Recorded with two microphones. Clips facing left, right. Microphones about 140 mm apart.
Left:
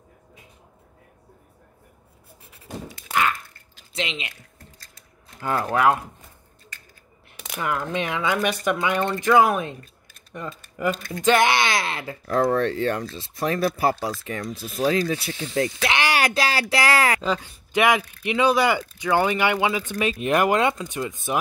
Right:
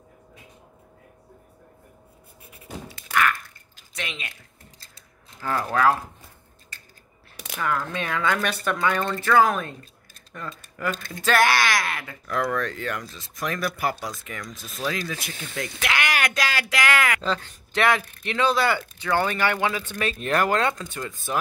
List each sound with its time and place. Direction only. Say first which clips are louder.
3.1 s biting: even; 25° left (ahead or behind)
3.9 s speech: left 5 dB; 20° left (ahead or behind)
4.6 s a sound: left 2 dB; 30° right (ahead or behind)
5.4 s speech: left 1 dB; 20° left (ahead or behind)
7.5 s speech: left 1 dB; 20° left (ahead or behind)
17.2 s speech: left 2 dB; 10° left (ahead or behind)